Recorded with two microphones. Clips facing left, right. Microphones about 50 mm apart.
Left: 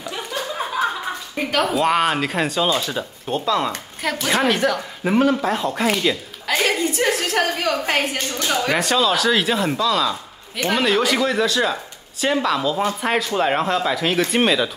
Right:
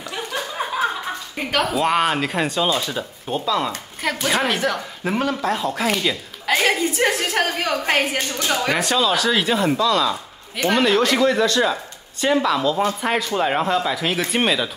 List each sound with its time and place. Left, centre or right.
1.5 s speech: centre
6.6 s a woman's voice: centre